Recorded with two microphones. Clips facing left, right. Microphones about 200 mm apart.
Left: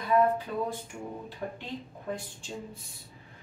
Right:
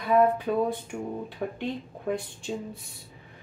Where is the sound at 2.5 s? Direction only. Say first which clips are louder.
Right 7 dB; 75° right (ahead or behind).